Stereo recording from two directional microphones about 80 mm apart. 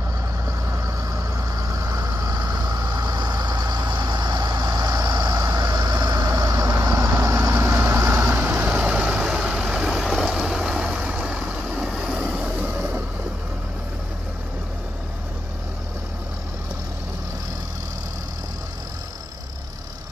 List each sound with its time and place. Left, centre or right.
0.5 s vehicle: right
6.8 s vehicle: right; by 12.8 s centre